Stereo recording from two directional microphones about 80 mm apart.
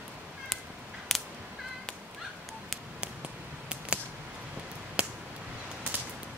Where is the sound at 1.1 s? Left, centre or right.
Centre.